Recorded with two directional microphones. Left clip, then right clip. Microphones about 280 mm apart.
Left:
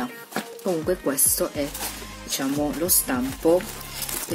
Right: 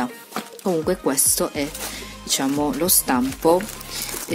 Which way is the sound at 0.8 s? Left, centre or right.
Right.